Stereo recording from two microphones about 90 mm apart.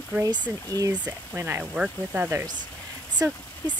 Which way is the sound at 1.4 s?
25° right (ahead or behind).